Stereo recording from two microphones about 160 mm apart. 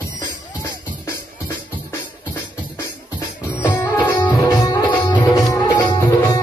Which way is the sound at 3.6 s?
15° left (ahead or behind).